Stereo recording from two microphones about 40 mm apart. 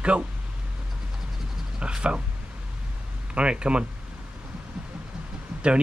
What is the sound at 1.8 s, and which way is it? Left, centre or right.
Speech, right.